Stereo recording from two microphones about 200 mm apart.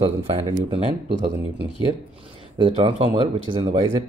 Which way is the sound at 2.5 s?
25° right (ahead or behind).